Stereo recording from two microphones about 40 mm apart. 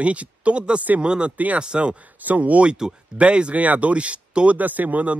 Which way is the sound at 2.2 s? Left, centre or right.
Right.